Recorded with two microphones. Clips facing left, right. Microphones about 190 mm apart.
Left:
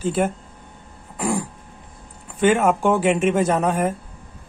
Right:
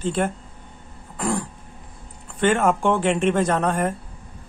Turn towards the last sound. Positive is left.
turn(degrees=5)  # may be behind; listen again after turning